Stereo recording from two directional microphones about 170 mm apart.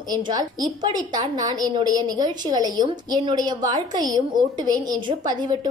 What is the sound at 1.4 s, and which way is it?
A woman's voice, 20° right (ahead or behind).